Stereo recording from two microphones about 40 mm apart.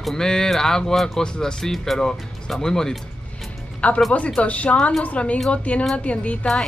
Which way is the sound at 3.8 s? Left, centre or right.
Left.